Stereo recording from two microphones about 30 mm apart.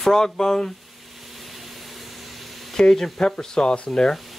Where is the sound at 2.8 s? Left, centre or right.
Left.